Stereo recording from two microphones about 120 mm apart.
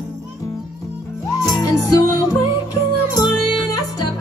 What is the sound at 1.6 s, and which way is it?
Music, 30° left (ahead or behind).